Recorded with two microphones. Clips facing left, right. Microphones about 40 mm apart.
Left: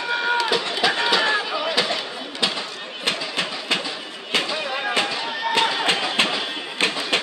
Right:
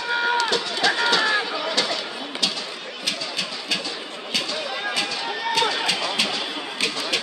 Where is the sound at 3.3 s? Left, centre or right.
Left.